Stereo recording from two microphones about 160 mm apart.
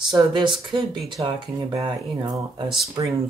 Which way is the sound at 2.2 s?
20° right (ahead or behind).